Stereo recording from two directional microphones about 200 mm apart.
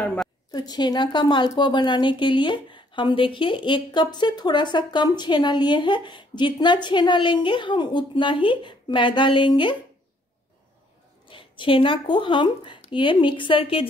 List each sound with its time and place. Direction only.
0.0 s a woman's voice: centre (ahead or behind)
0.5 s speech: 20° left (ahead or behind)
11.2 s speech: 25° left (ahead or behind)